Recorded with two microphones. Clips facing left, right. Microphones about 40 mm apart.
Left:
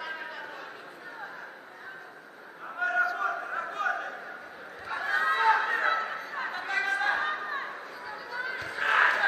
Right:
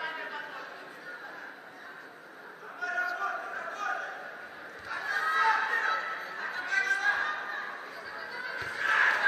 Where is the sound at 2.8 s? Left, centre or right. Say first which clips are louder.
Left 5 dB; left.